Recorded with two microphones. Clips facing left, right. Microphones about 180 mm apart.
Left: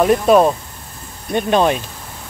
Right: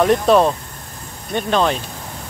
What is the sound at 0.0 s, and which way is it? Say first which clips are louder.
Speech: left 2 dB; 5° left (ahead or behind).